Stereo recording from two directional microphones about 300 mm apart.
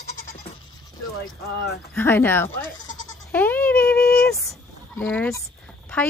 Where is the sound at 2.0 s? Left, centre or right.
Centre.